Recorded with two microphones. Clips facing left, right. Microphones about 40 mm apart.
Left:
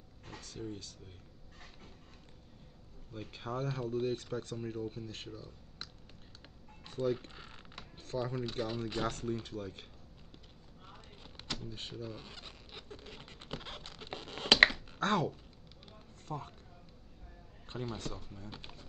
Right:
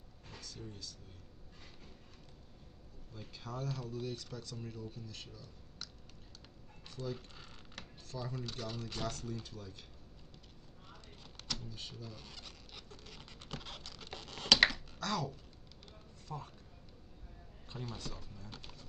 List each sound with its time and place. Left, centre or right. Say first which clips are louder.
0.3 s a sound: left 6 dB; left
3.1 s speech: left 6 dB; left
6.9 s speech: left 9 dB; left
7.3 s a sound: left 2 dB; left
8.1 s speech: left 7 dB; left
8.5 s speech: left 6 dB; left
9.1 s speech: left 6 dB; left
11.7 s zipper: left 5 dB; left
16.3 s speech: left 4 dB; centre
17.9 s speech: left 4 dB; left
18.5 s pigeon: left 3 dB; left